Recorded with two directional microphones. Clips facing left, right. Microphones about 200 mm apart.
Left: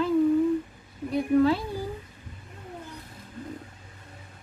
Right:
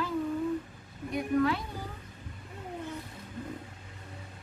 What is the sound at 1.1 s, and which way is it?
Child singing, 30° left (ahead or behind).